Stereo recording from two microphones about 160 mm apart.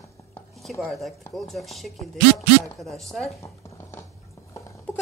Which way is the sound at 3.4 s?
15° left (ahead or behind).